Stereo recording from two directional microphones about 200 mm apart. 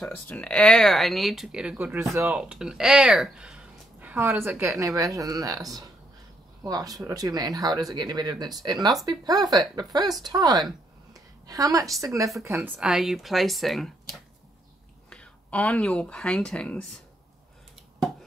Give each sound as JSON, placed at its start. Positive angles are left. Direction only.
{"t": 0.0, "sound": "a woman's voice", "side_deg": 5}